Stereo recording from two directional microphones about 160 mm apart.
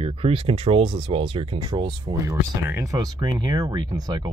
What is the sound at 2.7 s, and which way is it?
Speech, 15° right (ahead or behind).